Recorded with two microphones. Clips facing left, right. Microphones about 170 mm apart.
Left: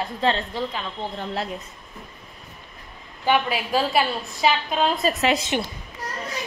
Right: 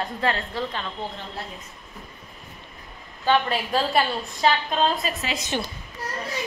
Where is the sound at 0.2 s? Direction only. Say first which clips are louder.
Left 3 dB; 20° left (ahead or behind).